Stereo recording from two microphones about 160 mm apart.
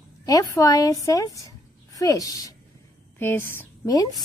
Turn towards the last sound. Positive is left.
turn(degrees=25)  # may be behind; listen again after turning